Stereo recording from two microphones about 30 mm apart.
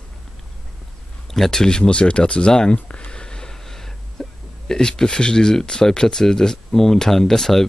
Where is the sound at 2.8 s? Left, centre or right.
Left; by 4.2 s centre.